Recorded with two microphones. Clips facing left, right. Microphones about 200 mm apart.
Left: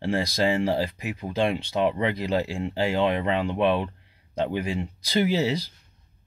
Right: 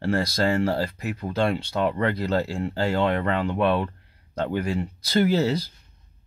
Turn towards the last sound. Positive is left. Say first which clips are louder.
# right 2 dB
turn(degrees=15)  # may be behind; listen again after turning